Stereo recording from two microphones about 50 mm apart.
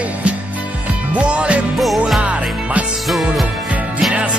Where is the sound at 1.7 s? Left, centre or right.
Centre.